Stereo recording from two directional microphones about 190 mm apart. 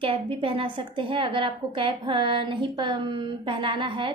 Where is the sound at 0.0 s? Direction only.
30° right (ahead or behind).